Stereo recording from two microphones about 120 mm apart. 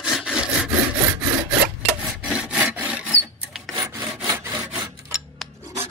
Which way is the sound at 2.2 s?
10° right (ahead or behind).